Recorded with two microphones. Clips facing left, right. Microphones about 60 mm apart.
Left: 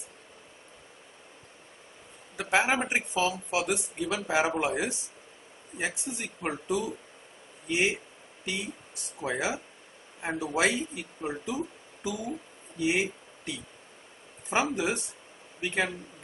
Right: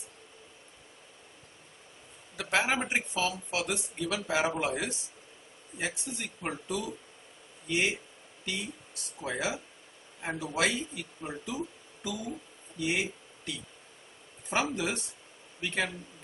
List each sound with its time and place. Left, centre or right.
2.3 s speech: centre
9.2 s speech: centre
12.7 s a sound: left
14.5 s speech: centre